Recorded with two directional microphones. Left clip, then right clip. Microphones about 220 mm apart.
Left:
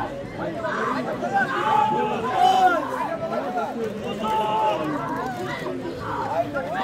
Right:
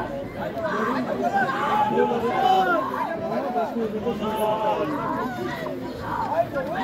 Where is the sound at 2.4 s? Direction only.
20° left (ahead or behind).